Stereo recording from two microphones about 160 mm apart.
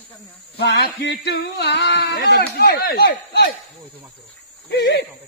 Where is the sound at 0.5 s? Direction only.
90° left.